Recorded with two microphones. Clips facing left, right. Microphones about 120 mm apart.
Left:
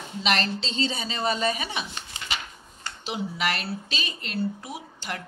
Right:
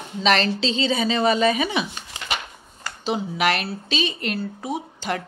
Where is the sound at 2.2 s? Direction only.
55° right (ahead or behind).